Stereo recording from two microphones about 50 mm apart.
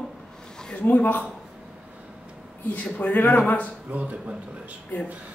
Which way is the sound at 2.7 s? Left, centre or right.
Left.